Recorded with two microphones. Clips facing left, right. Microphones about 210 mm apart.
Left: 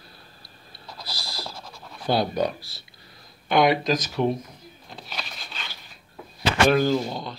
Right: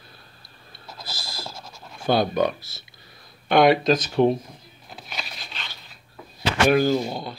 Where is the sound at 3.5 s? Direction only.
25° right (ahead or behind).